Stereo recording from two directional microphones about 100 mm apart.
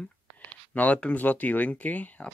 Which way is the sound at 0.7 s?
15° left (ahead or behind).